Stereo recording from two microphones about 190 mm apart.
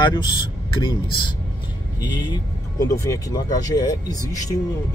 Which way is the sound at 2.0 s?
20° left (ahead or behind).